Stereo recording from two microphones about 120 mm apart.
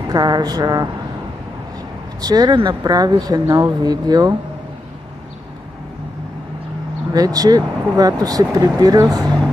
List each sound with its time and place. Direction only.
0.1 s speech: 35° right (ahead or behind)
2.2 s speech: 35° right (ahead or behind)
7.2 s speech: 30° right (ahead or behind)